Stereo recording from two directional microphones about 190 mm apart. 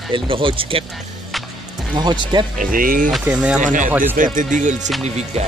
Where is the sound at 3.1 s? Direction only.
5° right (ahead or behind).